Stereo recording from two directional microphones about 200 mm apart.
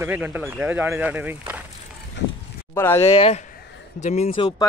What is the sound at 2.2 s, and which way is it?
Honk, 60° left (ahead or behind).